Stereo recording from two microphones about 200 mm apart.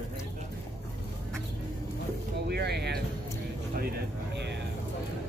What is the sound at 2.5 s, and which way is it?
Speech, 55° right (ahead or behind).